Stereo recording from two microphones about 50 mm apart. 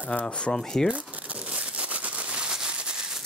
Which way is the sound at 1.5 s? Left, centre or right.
Right.